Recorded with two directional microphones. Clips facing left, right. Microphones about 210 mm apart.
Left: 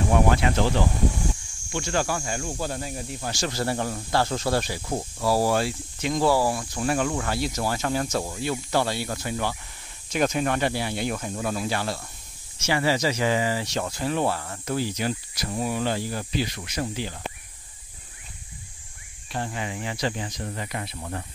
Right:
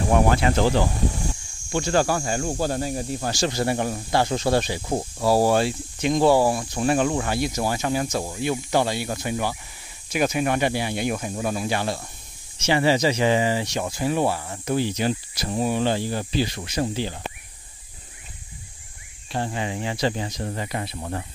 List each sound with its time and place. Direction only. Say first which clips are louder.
0.4 s speech: right 3 dB; 40° right (ahead or behind)
1.7 s speech: right 5 dB; 40° right (ahead or behind)
3.4 s speech: right 3 dB; 20° right (ahead or behind)
19.3 s speech: right 4 dB; 30° right (ahead or behind)